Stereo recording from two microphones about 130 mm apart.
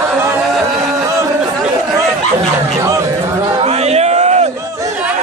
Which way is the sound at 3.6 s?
55° right (ahead or behind).